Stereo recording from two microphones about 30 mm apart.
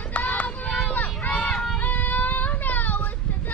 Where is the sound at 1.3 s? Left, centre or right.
Left.